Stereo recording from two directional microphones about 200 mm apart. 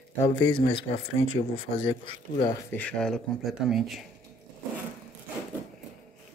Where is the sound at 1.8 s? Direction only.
25° left (ahead or behind).